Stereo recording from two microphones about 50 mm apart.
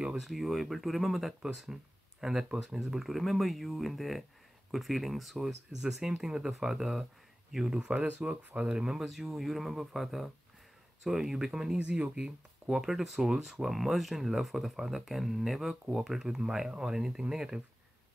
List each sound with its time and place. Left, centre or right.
0.1 s speech: centre
8.2 s speech: right
9.0 s speech: centre
11.9 s speech: right